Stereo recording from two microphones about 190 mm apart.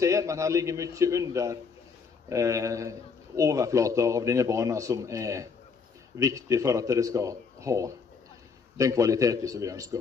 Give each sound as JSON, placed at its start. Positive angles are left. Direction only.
{"t": 0.0, "sound": "a man's voice", "side_deg": -15}